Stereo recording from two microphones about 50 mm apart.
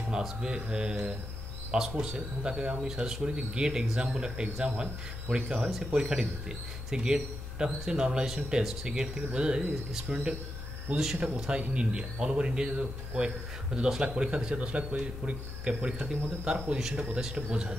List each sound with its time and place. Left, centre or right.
0.1 s a man's voice: centre
10.9 s a man's voice: right